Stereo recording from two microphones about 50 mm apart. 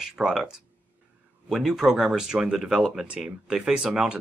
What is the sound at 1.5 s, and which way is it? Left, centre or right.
Speech, centre.